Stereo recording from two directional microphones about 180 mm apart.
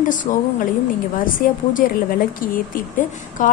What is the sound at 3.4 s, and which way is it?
Speech, 45° left (ahead or behind).